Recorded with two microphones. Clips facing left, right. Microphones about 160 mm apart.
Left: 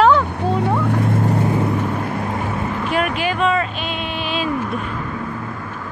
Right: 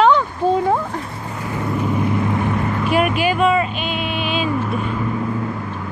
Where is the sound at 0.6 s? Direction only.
70° left (ahead or behind).